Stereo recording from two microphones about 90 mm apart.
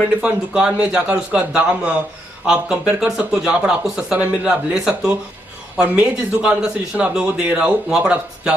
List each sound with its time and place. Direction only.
0.2 s speech: 10° right (ahead or behind)